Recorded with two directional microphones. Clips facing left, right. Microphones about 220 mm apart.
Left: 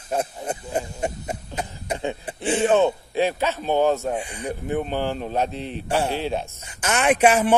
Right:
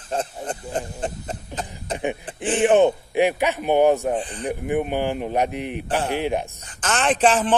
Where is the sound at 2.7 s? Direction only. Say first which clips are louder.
Right 4 dB; 15° right (ahead or behind).